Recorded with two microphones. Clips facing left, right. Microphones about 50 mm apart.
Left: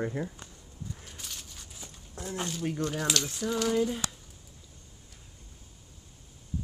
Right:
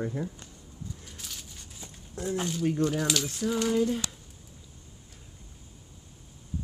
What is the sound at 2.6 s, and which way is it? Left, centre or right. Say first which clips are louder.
Speech: right 5 dB; centre.